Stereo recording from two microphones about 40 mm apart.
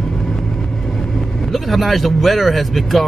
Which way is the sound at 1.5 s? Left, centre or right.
Centre.